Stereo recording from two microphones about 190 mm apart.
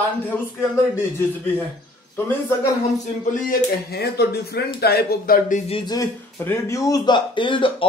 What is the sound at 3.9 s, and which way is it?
Speech, 55° left (ahead or behind).